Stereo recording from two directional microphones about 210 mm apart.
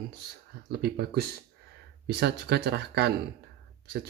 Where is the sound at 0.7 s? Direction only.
50° right (ahead or behind).